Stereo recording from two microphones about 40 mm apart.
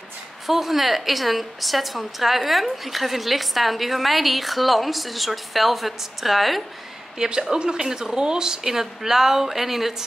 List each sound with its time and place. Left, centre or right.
0.5 s a woman's voice: centre
7.2 s a woman's voice: centre